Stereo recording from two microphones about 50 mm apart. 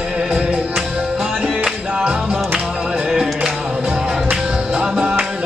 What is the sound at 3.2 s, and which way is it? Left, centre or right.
Music, centre.